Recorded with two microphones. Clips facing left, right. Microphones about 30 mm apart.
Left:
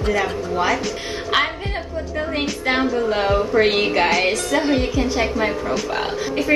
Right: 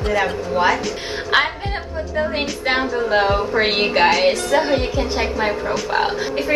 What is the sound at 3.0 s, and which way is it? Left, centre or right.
A woman's voice, right.